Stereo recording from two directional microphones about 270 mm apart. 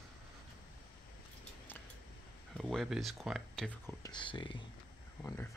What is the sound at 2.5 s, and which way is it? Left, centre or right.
Speech, centre.